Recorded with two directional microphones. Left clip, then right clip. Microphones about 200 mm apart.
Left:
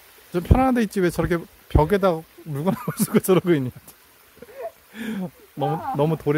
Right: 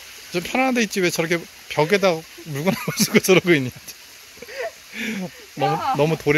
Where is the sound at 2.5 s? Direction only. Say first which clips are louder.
Right 3 dB; 5° left (ahead or behind).